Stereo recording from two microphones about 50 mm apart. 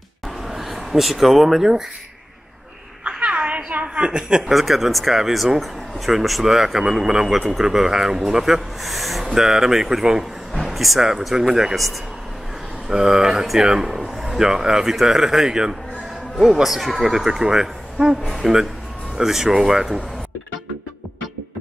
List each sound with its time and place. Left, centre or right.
0.5 s speech: centre
3.0 s a sound: right
4.5 s a man's voice: centre